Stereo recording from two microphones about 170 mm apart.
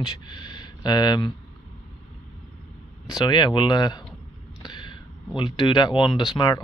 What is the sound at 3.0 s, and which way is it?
Speech, 25° left (ahead or behind).